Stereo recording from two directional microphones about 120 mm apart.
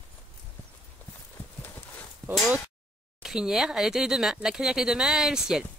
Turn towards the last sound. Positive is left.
turn(degrees=-5)  # may be behind; listen again after turning